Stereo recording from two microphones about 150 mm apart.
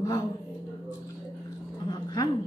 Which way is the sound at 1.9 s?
25° left (ahead or behind).